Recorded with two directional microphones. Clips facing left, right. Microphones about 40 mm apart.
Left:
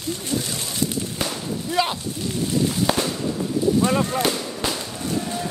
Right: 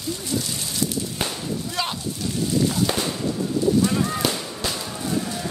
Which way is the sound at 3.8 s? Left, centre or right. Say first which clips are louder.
Left 2 dB; left.